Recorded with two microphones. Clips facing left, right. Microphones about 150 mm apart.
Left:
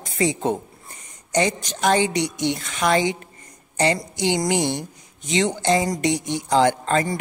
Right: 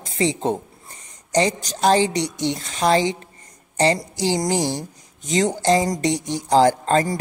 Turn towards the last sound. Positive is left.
turn(degrees=-35)  # may be behind; listen again after turning